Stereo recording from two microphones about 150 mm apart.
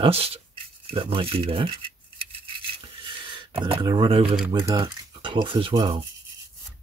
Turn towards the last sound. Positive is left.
turn(degrees=-30)  # may be behind; listen again after turning